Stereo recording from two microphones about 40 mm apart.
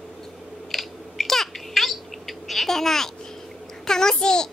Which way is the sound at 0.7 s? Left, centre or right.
Centre.